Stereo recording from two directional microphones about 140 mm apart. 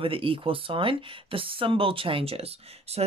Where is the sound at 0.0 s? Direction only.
40° right (ahead or behind).